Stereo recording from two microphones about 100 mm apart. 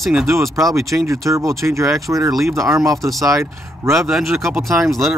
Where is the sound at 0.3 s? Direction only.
30° right (ahead or behind).